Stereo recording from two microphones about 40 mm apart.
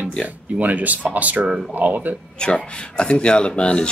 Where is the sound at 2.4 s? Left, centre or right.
Left.